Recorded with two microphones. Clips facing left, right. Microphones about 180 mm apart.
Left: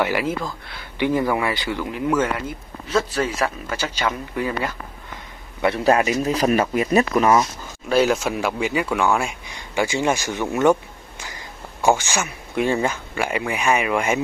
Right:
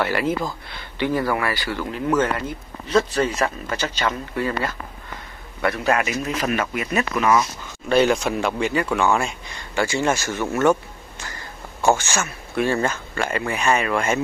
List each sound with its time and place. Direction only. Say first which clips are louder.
0.0 s speech: even; 10° left (ahead or behind)
0.9 s speech: left 2 dB; 15° left (ahead or behind)
5.9 s speech: left 5 dB; 35° left (ahead or behind)
7.9 s speech: right 1 dB; 5° left (ahead or behind)